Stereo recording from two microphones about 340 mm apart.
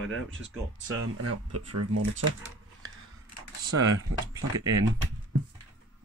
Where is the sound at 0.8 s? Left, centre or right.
Right.